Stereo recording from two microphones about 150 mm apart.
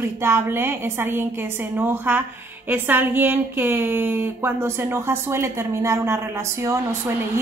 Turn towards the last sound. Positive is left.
turn(degrees=-20)  # may be behind; listen again after turning